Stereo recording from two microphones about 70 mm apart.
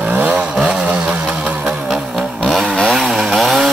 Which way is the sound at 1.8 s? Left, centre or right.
Centre.